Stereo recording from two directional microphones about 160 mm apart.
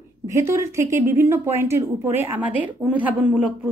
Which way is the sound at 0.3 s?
15° right (ahead or behind).